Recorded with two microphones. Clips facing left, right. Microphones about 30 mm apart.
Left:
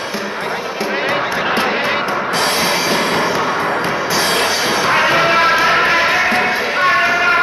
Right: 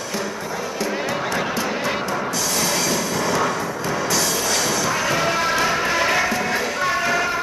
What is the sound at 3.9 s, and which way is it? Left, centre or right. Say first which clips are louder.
Music: left 6 dB; left.